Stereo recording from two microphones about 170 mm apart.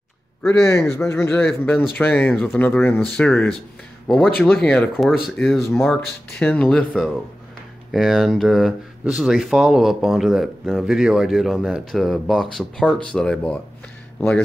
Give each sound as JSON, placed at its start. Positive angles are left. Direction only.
{"t": 0.5, "sound": "speech", "side_deg": 15}
{"t": 5.6, "sound": "speech", "side_deg": 15}